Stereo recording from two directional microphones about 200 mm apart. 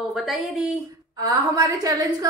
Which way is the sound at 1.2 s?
20° right (ahead or behind).